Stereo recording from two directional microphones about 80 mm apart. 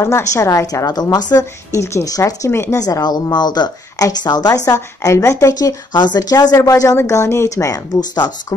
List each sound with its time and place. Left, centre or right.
0.0 s a woman's voice: left
1.3 s a woman's voice: left
2.5 s a woman's voice: left
2.8 s a woman's voice: left
4.6 s a woman's voice: left
8.0 s a woman's voice: left